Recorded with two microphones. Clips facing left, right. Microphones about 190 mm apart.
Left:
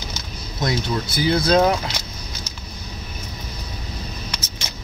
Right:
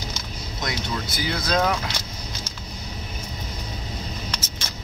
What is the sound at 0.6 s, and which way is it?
Speech, 30° left (ahead or behind).